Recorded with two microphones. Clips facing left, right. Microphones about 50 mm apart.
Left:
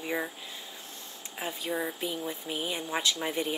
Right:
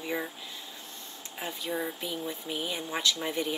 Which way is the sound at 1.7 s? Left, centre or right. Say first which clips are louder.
Left 1 dB; centre.